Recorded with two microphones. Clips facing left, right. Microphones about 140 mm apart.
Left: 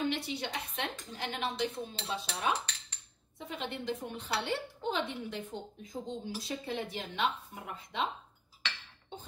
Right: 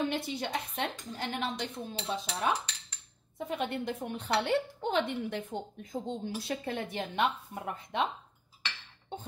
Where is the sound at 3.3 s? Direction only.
55° right (ahead or behind).